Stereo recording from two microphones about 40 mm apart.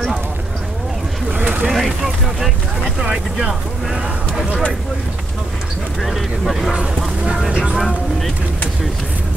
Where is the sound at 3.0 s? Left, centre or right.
Centre.